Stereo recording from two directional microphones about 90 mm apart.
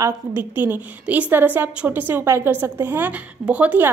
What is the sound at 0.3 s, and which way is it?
A woman's voice, 20° right (ahead or behind).